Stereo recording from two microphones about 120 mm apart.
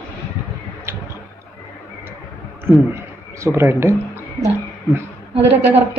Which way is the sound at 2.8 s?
25° right (ahead or behind).